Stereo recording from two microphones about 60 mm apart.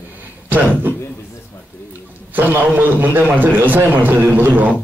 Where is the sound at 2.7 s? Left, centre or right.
Right.